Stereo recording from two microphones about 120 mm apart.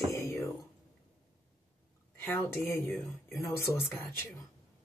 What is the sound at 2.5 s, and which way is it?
Speech, 20° left (ahead or behind).